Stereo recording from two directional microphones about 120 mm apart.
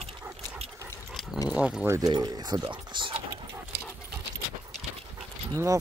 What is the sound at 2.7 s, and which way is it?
Typing, 40° right (ahead or behind).